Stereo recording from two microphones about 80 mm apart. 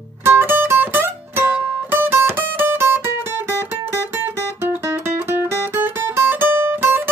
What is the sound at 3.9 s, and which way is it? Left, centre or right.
Music, right.